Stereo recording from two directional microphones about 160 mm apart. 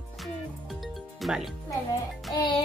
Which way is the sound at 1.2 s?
Centre (ahead or behind).